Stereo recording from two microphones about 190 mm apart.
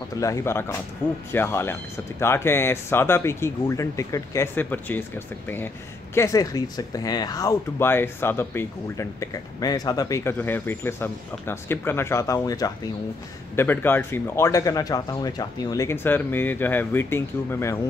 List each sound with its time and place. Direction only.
0.2 s speech: 15° left (ahead or behind)
6.1 s speech: 15° left (ahead or behind)